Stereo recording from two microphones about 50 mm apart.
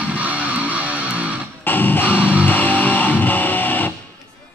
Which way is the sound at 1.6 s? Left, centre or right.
Left.